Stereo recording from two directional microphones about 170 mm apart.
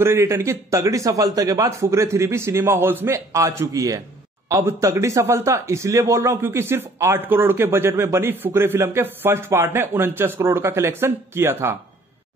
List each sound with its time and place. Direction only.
0.0 s speech: 15° right (ahead or behind)